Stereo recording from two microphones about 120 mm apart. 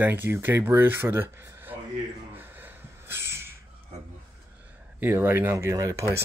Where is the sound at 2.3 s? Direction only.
15° right (ahead or behind).